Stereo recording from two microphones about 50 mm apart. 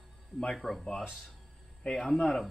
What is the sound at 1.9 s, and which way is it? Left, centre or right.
Speech, centre.